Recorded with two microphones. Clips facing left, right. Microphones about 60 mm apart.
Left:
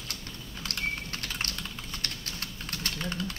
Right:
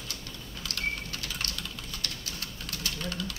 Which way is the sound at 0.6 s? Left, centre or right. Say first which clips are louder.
Even; left.